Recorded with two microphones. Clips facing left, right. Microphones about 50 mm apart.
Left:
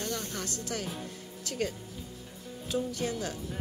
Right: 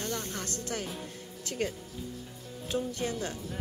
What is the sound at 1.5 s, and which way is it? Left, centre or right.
Speech, centre.